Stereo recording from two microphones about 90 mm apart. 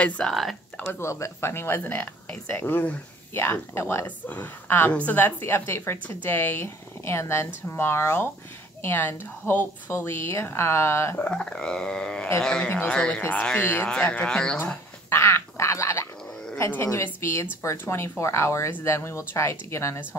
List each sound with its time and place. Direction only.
0.3 s speech: centre (ahead or behind)
0.9 s speech: 30° left (ahead or behind)
11.2 s a sound: 10° left (ahead or behind)
12.4 s speech: 10° left (ahead or behind)
13.6 s speech: 25° left (ahead or behind)
14.0 s speech: 10° left (ahead or behind)
15.0 s a sound: 30° left (ahead or behind)
16.5 s a woman's voice: 30° left (ahead or behind)